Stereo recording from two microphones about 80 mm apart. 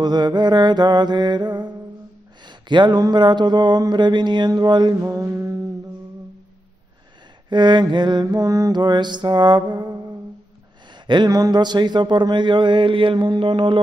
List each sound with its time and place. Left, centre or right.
0.0 s mantra: right
2.4 s a sound: right
3.0 s mantra: right
5.0 s mantra: right
7.4 s mantra: right
8.7 s mantra: right
11.2 s speech: right